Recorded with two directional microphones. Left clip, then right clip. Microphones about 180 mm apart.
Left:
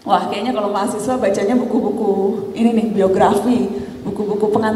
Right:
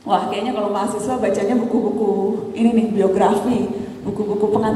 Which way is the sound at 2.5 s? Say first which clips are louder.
Even; 35° left (ahead or behind).